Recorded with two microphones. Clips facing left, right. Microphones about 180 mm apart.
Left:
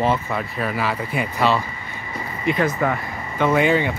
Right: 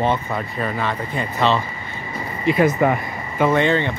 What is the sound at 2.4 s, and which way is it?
Speech, 10° right (ahead or behind).